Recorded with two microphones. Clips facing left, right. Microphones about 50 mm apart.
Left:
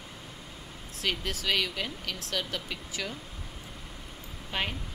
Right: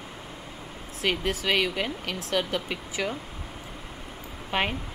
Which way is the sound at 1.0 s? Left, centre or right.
Right.